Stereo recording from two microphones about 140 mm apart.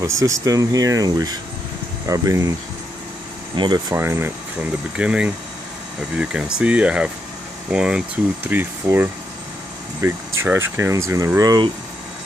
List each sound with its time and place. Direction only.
0.0 s speech: 20° right (ahead or behind)
3.5 s speech: 35° right (ahead or behind)
3.9 s speech: 15° right (ahead or behind)